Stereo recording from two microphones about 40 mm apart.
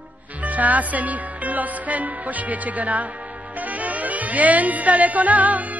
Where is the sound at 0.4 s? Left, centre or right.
Right.